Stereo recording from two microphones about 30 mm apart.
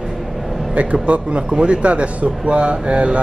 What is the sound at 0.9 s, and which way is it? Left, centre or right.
A man's voice, right.